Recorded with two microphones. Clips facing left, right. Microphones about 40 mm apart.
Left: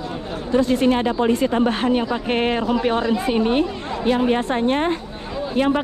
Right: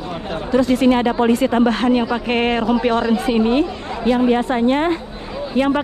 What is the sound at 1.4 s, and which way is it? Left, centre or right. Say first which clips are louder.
Speech: right 3 dB; right.